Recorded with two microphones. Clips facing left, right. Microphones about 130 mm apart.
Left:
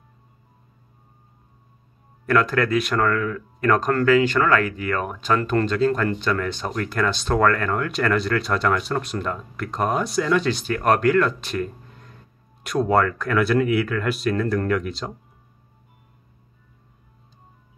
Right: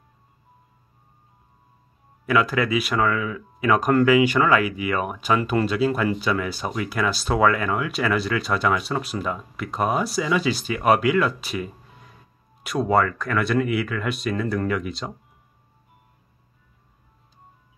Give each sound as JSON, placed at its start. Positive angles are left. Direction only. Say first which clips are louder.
{"t": 2.2, "sound": "speech", "louder": "left 1 dB", "side_deg": -5}